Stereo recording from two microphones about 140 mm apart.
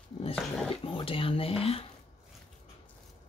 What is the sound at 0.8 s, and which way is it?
Speech, 40° left (ahead or behind).